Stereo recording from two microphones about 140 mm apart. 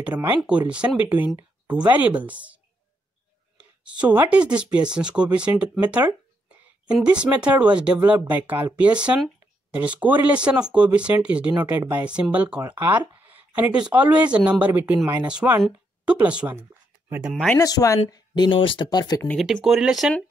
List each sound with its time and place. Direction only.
0.0 s speech: 10° right (ahead or behind)
17.6 s speech: 25° left (ahead or behind)
19.3 s speech: centre (ahead or behind)